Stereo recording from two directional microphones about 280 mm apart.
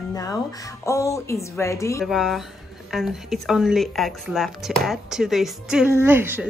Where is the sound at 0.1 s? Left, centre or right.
Centre.